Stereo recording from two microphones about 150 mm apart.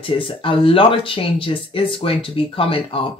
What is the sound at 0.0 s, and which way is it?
Speech, 35° left (ahead or behind).